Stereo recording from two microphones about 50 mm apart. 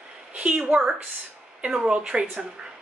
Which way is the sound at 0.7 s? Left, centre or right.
Centre.